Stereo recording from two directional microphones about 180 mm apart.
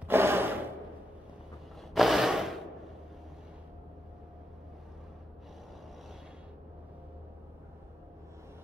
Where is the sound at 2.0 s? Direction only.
Centre (ahead or behind).